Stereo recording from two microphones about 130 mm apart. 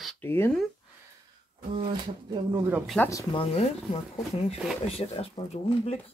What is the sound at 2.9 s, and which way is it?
Speech, 10° left (ahead or behind).